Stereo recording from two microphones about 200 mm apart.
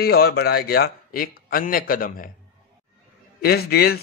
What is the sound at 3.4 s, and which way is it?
Speech, 50° left (ahead or behind).